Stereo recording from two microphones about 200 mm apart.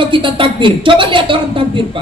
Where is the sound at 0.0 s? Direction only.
25° right (ahead or behind).